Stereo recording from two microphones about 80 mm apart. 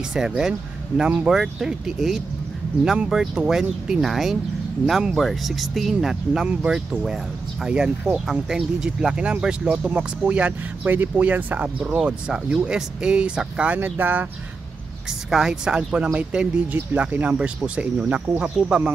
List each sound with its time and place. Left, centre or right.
0.1 s speech: centre
13.7 s speech: right
15.2 s speech: centre